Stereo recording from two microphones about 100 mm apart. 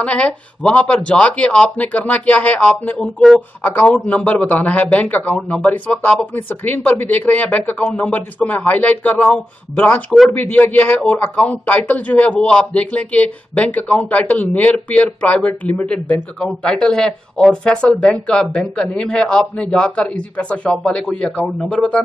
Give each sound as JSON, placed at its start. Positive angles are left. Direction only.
{"t": 0.0, "sound": "speech", "side_deg": 10}